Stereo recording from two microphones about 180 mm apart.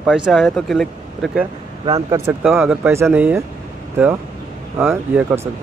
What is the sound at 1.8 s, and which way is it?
Speech, 20° right (ahead or behind).